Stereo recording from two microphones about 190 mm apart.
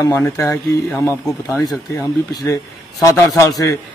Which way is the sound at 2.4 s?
15° left (ahead or behind).